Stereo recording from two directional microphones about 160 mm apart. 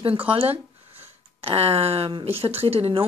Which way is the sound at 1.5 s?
35° right (ahead or behind).